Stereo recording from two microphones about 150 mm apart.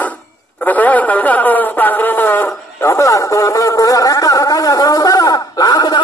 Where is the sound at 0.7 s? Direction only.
10° left (ahead or behind).